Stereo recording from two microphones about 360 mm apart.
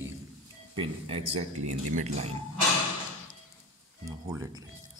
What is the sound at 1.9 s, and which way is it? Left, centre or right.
Speech, centre.